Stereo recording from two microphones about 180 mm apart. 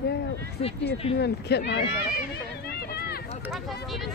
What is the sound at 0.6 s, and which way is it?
Speech, 35° left (ahead or behind).